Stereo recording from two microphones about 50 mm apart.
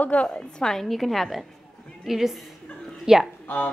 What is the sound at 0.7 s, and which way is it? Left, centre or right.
A woman's voice, centre.